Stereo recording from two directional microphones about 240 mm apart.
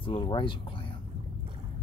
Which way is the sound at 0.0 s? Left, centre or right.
Left.